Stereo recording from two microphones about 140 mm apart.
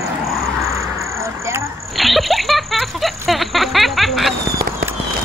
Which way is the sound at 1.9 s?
Centre (ahead or behind).